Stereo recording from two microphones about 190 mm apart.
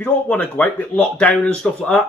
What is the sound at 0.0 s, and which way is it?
Speech, 5° left (ahead or behind).